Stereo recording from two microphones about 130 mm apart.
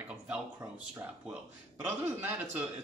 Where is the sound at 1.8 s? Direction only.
15° right (ahead or behind).